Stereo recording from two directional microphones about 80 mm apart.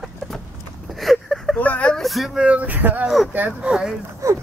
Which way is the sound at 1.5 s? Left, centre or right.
Centre.